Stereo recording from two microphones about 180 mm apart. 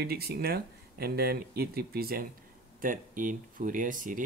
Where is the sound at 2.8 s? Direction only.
50° right (ahead or behind).